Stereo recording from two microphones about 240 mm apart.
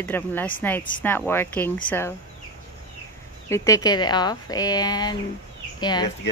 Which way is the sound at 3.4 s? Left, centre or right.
Centre.